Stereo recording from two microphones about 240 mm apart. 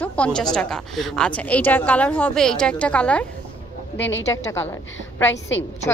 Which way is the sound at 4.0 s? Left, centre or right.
Left.